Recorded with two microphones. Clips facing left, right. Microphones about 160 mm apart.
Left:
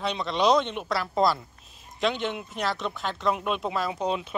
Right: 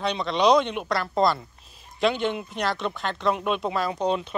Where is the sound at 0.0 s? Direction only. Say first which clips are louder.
Right 2 dB; centre (ahead or behind).